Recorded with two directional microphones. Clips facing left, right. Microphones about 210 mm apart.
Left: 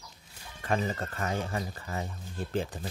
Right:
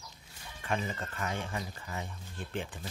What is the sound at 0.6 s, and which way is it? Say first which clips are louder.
Speech: left 4 dB; 40° left (ahead or behind).